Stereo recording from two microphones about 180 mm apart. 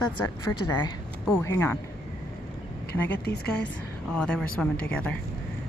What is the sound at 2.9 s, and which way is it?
Speech, 70° left (ahead or behind).